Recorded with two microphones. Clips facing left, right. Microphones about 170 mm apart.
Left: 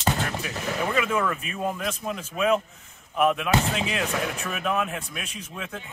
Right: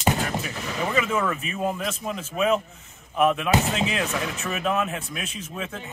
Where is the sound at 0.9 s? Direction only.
Centre (ahead or behind).